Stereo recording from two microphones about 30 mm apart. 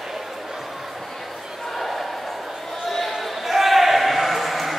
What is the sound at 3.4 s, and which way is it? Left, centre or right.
Basketball bounce, centre.